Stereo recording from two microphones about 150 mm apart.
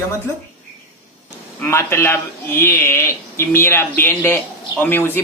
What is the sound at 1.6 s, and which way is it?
A man's voice, 15° left (ahead or behind).